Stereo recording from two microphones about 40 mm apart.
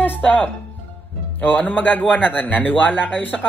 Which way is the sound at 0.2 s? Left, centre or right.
Left.